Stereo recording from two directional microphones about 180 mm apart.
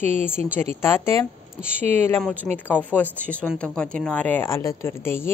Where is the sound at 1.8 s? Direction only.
35° right (ahead or behind).